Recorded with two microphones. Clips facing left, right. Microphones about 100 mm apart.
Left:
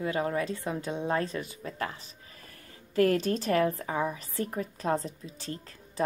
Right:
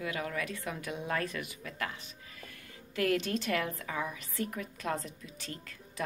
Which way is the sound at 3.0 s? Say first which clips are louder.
Left 6 dB; 40° left (ahead or behind).